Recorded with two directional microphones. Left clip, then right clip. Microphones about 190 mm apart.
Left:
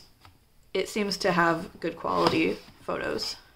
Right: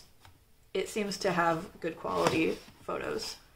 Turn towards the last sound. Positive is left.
turn(degrees=35)  # may be behind; listen again after turning